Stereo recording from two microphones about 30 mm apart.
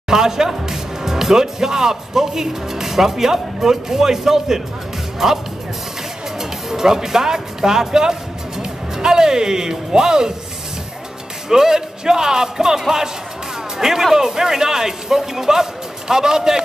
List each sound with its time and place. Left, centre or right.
0.1 s speech: centre
6.7 s speech: centre
11.4 s speech: right